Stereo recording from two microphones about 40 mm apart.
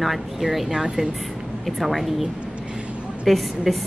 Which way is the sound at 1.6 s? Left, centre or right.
Centre.